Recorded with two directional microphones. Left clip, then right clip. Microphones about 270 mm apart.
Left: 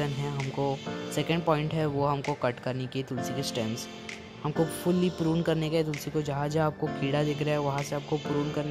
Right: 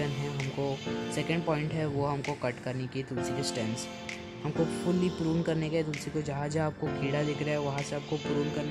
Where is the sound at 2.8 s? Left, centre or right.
Centre.